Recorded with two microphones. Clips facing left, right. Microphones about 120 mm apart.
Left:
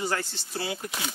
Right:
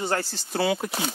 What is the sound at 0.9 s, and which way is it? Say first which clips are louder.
Speech: right 5 dB; 35° right (ahead or behind).